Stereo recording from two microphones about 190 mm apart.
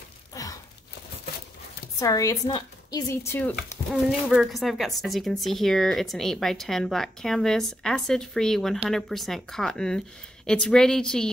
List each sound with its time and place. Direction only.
0.3 s sigh: 20° left (ahead or behind)
2.0 s speech: 15° left (ahead or behind)
3.9 s speech: centre (ahead or behind)